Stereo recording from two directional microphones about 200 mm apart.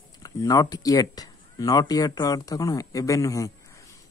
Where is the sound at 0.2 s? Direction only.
20° left (ahead or behind).